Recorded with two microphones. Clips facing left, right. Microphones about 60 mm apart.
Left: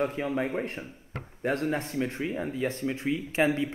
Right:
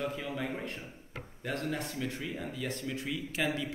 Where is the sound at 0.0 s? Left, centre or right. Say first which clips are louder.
Left 7 dB; left.